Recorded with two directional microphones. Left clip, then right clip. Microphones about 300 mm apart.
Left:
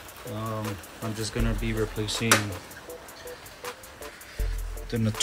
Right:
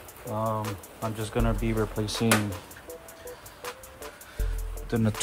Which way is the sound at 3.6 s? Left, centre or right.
Centre.